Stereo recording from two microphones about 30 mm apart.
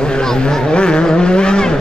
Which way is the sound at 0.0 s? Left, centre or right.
Left.